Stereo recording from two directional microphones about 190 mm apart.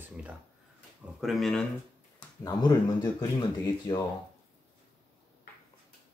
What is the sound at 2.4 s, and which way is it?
Speech, 20° left (ahead or behind).